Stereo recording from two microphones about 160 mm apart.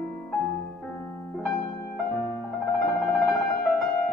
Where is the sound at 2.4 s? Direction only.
Centre (ahead or behind).